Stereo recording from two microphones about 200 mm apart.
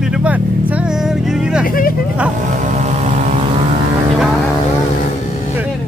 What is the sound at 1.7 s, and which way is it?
Vehicle, 45° left (ahead or behind).